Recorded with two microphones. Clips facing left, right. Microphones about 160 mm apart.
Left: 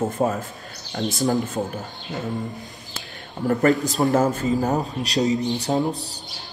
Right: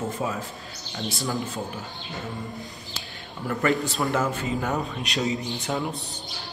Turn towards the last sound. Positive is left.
turn(degrees=40)  # may be behind; listen again after turning